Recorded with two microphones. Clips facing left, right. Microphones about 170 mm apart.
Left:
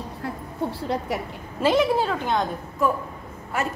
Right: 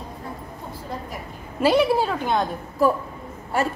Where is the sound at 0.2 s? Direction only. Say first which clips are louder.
Left 6 dB; 75° left (ahead or behind).